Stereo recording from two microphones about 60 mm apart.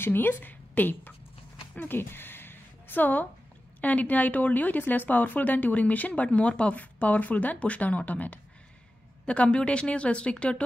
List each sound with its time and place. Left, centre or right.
0.0 s a woman's voice: left; by 10.6 s centre